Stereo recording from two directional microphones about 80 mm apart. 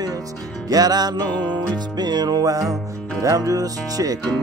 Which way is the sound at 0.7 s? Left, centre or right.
Right.